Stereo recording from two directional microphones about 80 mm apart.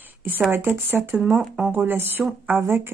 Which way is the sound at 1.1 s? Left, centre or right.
Centre.